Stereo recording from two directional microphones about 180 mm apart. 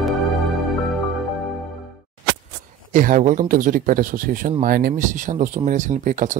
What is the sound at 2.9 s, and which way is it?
Speech, 50° right (ahead or behind).